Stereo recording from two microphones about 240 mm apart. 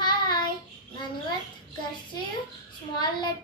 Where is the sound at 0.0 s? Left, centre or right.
Centre.